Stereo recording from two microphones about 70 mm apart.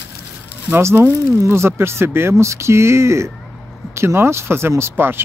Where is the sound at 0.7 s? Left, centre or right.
Right.